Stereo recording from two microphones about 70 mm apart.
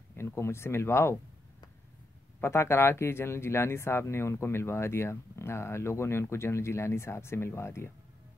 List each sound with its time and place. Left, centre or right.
0.1 s speech: left
2.4 s speech: left